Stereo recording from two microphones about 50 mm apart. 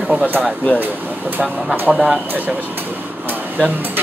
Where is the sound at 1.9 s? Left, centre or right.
Right.